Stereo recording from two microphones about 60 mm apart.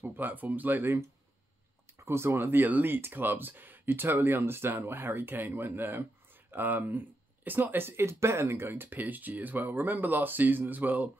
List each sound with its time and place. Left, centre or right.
0.1 s speech: right
1.9 s speech: right